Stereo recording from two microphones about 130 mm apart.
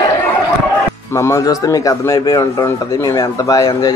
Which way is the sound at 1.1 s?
25° left (ahead or behind).